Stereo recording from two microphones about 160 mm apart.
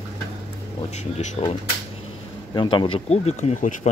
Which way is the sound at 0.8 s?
45° left (ahead or behind).